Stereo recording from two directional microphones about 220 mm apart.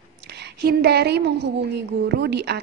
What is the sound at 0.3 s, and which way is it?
A woman's voice, 50° right (ahead or behind).